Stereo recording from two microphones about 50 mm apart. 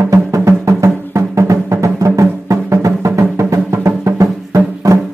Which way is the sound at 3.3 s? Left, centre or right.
Right.